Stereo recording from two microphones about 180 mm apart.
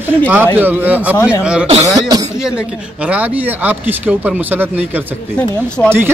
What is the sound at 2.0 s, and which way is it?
Speech, 20° right (ahead or behind).